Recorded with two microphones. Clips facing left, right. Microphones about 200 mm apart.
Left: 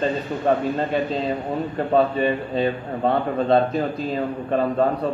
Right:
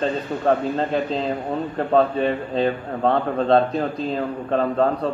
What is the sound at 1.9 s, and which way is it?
A man's voice, 5° left (ahead or behind).